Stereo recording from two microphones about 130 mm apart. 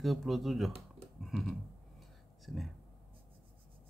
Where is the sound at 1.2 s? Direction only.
Centre (ahead or behind).